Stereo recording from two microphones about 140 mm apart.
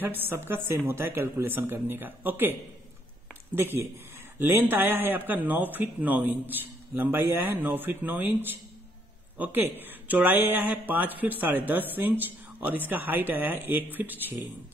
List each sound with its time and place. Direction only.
0.0 s speech: 15° right (ahead or behind)
3.5 s speech: 15° right (ahead or behind)